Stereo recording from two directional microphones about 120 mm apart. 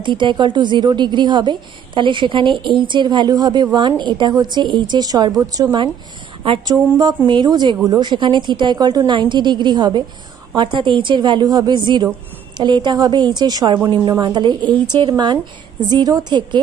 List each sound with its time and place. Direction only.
0.0 s a woman's voice: 40° right (ahead or behind)